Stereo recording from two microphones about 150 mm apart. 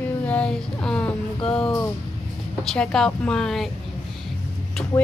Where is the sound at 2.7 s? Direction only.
5° left (ahead or behind).